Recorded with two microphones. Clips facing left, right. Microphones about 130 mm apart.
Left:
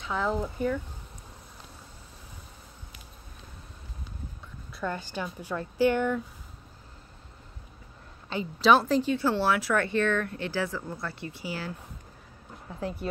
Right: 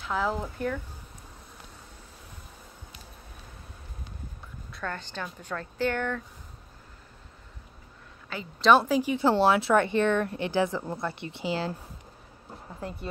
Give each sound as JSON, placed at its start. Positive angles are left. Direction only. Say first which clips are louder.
{"t": 0.0, "sound": "speech", "louder": "even", "side_deg": 0}
{"t": 4.8, "sound": "speech", "louder": "left 3 dB", "side_deg": 10}
{"t": 8.5, "sound": "speech", "louder": "right 1 dB", "side_deg": 0}
{"t": 9.1, "sound": "speech", "louder": "right 3 dB", "side_deg": -25}